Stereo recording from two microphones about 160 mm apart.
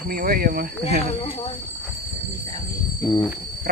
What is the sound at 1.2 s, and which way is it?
Speech, 35° left (ahead or behind).